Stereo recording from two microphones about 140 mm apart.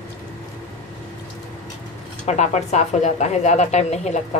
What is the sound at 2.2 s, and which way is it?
Speech, 55° left (ahead or behind).